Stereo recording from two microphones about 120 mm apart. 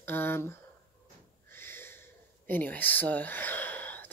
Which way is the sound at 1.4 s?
20° left (ahead or behind).